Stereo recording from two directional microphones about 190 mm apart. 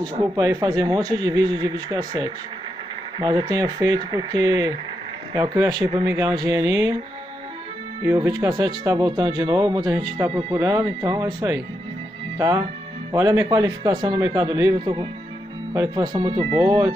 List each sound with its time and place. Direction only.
0.2 s speech: 20° right (ahead or behind)
8.0 s speech: 15° right (ahead or behind)